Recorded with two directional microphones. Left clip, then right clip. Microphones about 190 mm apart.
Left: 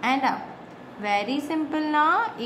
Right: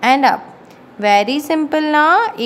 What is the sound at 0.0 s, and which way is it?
A woman's voice, 55° right (ahead or behind).